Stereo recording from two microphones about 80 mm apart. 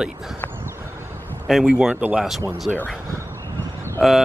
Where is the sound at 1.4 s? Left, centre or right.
Centre.